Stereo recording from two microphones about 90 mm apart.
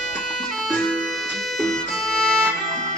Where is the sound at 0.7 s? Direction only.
5° left (ahead or behind).